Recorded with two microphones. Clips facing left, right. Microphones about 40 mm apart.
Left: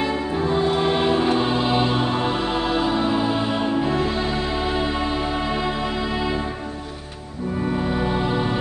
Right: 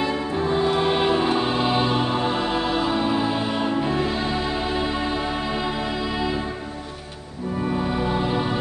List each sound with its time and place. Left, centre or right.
0.0 s music: centre
7.8 s music: centre